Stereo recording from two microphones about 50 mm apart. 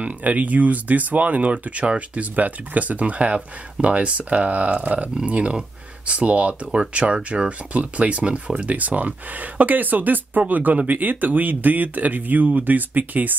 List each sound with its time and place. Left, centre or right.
0.0 s speech: right